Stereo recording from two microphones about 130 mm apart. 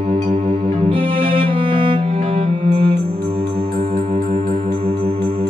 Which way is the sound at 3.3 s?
45° right (ahead or behind).